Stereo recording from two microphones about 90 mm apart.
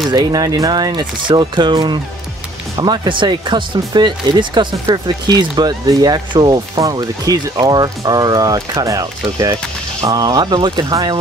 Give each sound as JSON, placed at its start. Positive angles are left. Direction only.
{"t": 0.1, "sound": "speech", "side_deg": -45}
{"t": 6.8, "sound": "speech", "side_deg": -40}